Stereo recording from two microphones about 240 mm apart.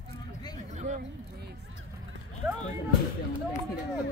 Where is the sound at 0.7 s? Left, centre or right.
Right.